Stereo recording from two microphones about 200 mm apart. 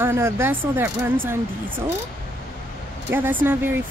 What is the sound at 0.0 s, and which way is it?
Speech, 10° right (ahead or behind).